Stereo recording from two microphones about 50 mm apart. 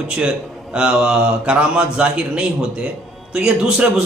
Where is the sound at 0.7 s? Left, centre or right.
Centre.